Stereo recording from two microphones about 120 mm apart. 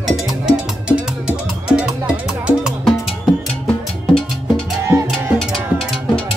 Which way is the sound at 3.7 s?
5° left (ahead or behind).